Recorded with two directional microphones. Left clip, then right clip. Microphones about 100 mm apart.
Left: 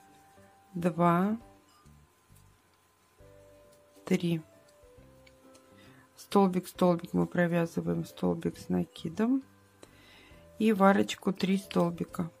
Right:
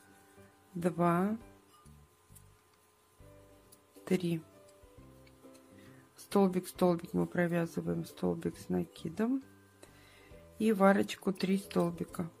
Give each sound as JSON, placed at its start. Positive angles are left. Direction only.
{"t": 0.7, "sound": "speech", "side_deg": 15}
{"t": 4.0, "sound": "speech", "side_deg": 20}
{"t": 6.2, "sound": "speech", "side_deg": 20}